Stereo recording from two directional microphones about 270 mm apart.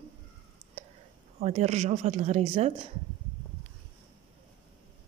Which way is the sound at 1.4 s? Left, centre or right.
Right.